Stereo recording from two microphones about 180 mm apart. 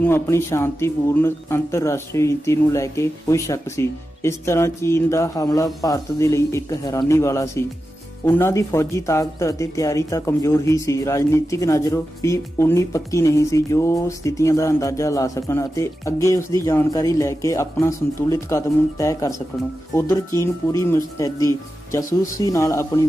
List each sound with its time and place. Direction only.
0.0 s speech: 15° left (ahead or behind)